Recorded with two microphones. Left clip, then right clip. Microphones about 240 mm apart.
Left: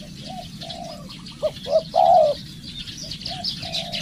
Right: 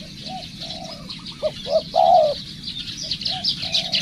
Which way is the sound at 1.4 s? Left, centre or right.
Centre.